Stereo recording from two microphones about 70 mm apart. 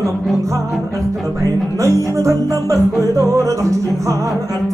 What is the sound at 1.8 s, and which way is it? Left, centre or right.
Music, right.